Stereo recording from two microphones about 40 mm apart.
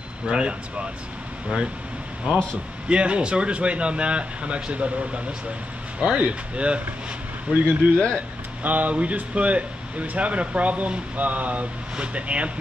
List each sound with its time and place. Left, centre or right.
0.3 s speech: right
2.3 s speech: right
7.6 s speech: left
8.6 s speech: right